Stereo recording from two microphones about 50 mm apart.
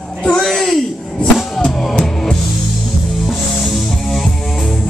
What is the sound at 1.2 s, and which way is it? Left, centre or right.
Music, centre.